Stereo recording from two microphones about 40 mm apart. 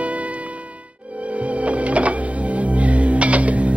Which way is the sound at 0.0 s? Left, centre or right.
Right.